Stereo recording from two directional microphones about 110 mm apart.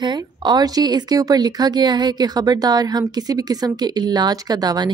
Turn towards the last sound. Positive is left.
turn(degrees=-40)  # may be behind; listen again after turning